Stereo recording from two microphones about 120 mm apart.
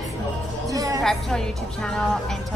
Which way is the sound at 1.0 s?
5° left (ahead or behind).